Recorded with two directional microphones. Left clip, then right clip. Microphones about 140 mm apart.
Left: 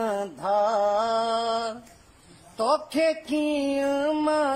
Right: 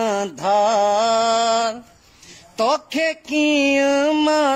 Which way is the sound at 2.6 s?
Centre (ahead or behind).